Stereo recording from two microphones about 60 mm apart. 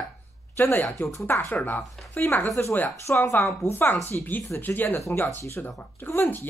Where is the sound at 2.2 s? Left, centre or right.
Left.